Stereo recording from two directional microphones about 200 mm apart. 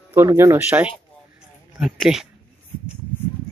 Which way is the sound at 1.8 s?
Centre (ahead or behind).